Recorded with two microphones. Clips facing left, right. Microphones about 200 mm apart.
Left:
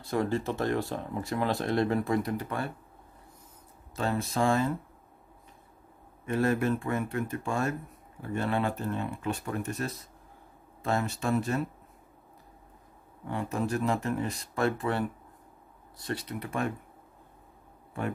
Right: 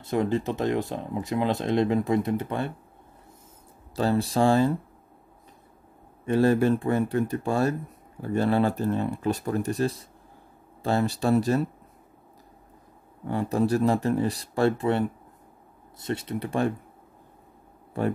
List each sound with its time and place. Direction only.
0.0 s speech: 20° right (ahead or behind)
3.9 s speech: 35° right (ahead or behind)
6.2 s speech: 30° right (ahead or behind)
13.3 s speech: 35° right (ahead or behind)